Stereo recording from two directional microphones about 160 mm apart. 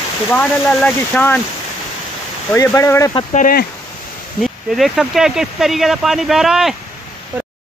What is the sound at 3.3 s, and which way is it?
Speech, 60° left (ahead or behind).